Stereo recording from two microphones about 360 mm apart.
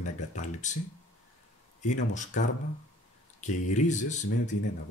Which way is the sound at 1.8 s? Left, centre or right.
Centre.